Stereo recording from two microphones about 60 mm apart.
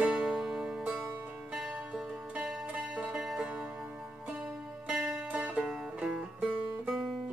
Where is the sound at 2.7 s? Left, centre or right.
Right.